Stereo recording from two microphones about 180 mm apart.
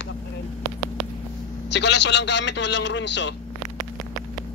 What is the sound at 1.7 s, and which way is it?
A man's voice, 75° left (ahead or behind).